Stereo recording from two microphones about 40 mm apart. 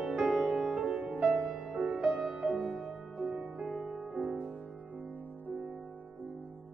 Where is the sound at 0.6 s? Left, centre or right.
Centre.